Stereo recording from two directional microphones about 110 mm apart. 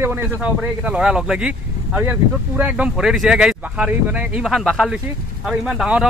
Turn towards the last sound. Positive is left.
turn(degrees=-5)  # may be behind; listen again after turning